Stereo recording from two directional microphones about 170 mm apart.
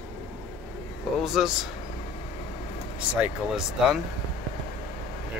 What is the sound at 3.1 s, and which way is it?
Speech, 5° right (ahead or behind).